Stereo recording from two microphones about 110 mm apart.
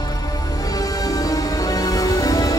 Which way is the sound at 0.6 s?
35° left (ahead or behind).